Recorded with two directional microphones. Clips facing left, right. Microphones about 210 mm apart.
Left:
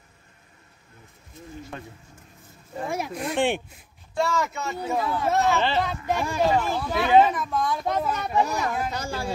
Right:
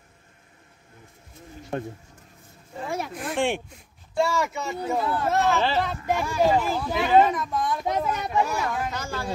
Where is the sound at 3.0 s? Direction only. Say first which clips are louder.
Left 1 dB; centre (ahead or behind).